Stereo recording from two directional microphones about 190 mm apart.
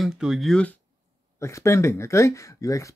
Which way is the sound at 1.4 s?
15° left (ahead or behind).